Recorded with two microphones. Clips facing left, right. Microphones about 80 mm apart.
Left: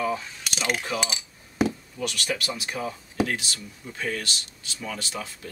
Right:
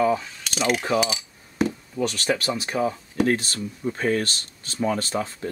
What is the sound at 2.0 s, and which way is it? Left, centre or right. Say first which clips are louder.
Speech: right 6 dB; right.